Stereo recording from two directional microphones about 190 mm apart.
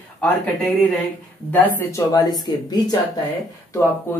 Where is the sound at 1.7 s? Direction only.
15° left (ahead or behind).